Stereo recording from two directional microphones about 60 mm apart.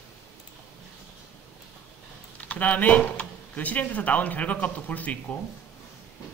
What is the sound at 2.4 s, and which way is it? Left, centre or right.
Speech, left.